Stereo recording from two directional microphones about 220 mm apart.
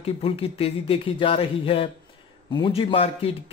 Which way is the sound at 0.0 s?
25° left (ahead or behind).